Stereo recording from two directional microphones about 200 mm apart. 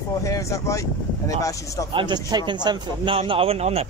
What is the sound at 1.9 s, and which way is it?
Speech, 25° right (ahead or behind).